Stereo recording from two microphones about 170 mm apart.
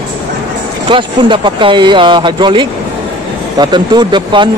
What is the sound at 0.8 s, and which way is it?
Speech, 30° right (ahead or behind).